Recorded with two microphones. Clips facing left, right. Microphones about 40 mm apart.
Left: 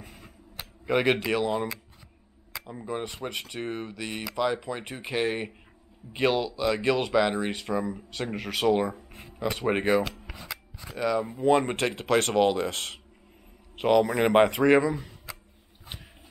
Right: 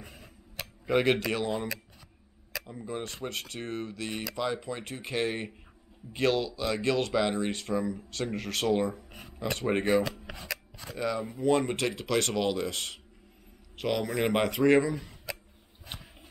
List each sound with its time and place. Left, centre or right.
0.8 s speech: centre
2.6 s speech: centre
10.4 s shuffling cards: centre
11.3 s speech: left
11.7 s speech: left
12.7 s speech: left
13.7 s speech: left